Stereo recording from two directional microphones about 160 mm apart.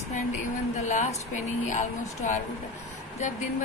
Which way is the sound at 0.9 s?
45° left (ahead or behind).